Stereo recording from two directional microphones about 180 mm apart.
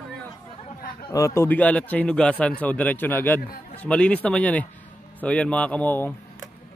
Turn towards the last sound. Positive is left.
turn(degrees=10)  # may be behind; listen again after turning